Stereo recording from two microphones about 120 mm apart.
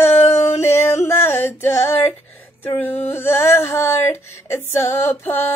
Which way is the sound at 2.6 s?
15° left (ahead or behind).